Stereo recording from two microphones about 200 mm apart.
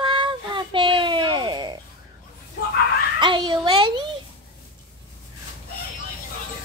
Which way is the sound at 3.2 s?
25° right (ahead or behind).